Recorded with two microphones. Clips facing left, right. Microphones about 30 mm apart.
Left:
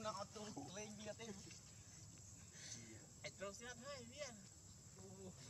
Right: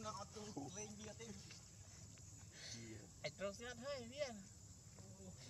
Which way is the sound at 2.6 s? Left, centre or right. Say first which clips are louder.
Right 4 dB; right.